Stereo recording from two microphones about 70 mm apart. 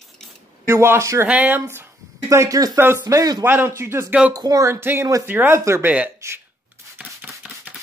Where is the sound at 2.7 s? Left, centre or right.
Right.